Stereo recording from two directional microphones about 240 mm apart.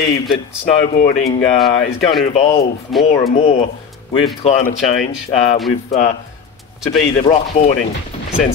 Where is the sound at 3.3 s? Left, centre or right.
Left.